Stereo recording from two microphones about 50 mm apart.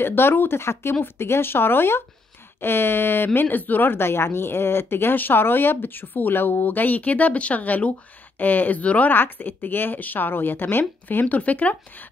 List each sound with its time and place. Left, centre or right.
0.0 s a woman's voice: left
9.1 s a woman's voice: left